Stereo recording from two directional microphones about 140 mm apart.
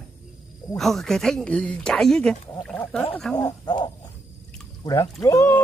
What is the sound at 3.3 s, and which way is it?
Speech, 30° left (ahead or behind).